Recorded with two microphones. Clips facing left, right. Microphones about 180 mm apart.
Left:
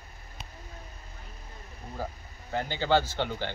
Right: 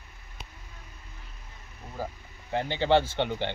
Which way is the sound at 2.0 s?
20° right (ahead or behind).